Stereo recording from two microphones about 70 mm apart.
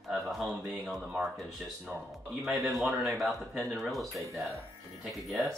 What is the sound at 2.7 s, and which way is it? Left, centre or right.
Speech, centre.